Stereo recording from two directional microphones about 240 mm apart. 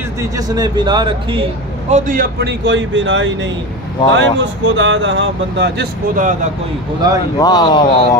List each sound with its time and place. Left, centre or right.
0.5 s speech: centre
1.9 s speech: right
7.3 s speech: centre